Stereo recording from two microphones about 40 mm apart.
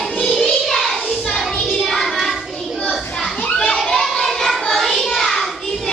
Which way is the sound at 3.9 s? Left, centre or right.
Centre.